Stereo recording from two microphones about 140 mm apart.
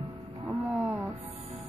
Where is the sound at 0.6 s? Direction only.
20° right (ahead or behind).